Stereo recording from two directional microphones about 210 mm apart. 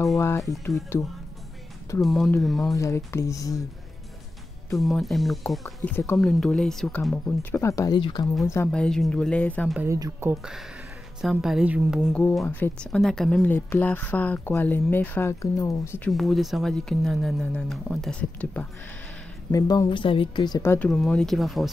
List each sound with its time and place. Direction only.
2.0 s speech: centre (ahead or behind)
2.7 s a woman's voice: 15° left (ahead or behind)
4.7 s speech: centre (ahead or behind)
5.9 s a woman's voice: 10° left (ahead or behind)
8.5 s speech: 10° left (ahead or behind)
9.8 s speech: 15° right (ahead or behind)
11.1 s speech: centre (ahead or behind)
12.1 s a woman's voice: 5° left (ahead or behind)
16.1 s speech: centre (ahead or behind)
19.5 s a woman's voice: 15° left (ahead or behind); by 21.6 s centre (ahead or behind)